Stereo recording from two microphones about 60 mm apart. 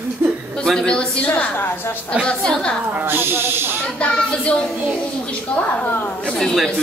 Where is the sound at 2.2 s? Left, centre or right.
Centre.